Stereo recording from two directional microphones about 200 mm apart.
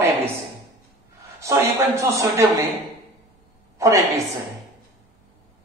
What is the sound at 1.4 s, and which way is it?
Speech, 15° right (ahead or behind).